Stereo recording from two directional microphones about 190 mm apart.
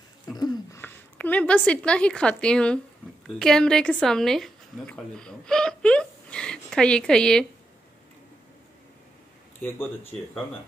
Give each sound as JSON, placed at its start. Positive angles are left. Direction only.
{"t": 0.7, "sound": "a woman's voice", "side_deg": 10}
{"t": 9.6, "sound": "speech", "side_deg": 10}